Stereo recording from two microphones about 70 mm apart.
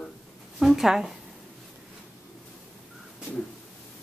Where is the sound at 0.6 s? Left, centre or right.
Centre.